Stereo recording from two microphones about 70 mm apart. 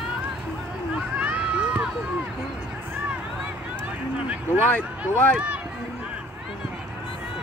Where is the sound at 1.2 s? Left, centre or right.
Centre.